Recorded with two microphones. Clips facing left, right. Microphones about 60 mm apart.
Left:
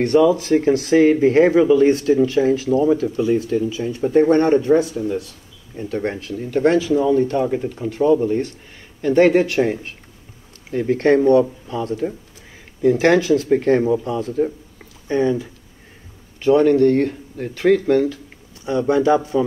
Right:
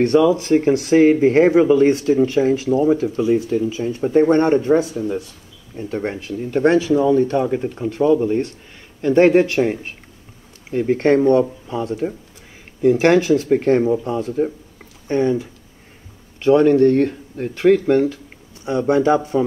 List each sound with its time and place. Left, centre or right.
0.0 s a man's voice: right
4.0 s speech: centre
4.3 s a man's voice: right
5.9 s speech: centre
6.2 s speech: right
10.7 s a man's voice: right
16.4 s speech: right